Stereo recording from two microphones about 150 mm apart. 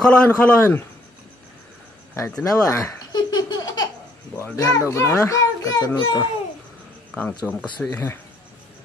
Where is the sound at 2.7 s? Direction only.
25° left (ahead or behind).